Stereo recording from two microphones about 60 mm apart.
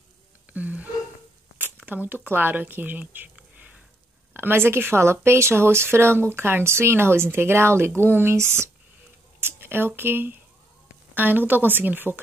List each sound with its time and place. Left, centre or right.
0.5 s wheeze: right
1.9 s speech: right
3.3 s a sound: right
4.3 s speech: right